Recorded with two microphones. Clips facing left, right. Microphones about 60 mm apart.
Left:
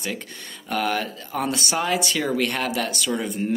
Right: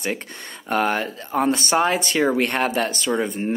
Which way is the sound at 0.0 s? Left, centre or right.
Right.